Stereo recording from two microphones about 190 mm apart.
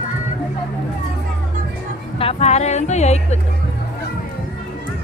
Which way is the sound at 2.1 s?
30° left (ahead or behind).